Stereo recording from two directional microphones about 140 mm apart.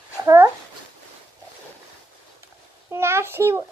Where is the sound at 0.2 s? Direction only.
20° right (ahead or behind).